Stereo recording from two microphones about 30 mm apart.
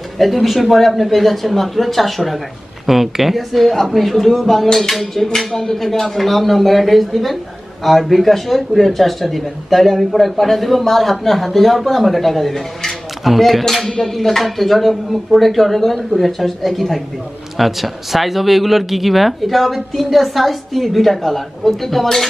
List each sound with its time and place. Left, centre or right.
0.2 s speech: centre
5.5 s speech: centre